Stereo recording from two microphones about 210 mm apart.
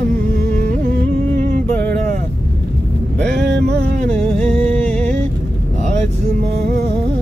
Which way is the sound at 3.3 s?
55° right (ahead or behind).